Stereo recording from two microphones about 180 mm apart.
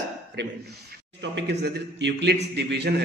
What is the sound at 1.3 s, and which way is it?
A man's voice, 70° right (ahead or behind).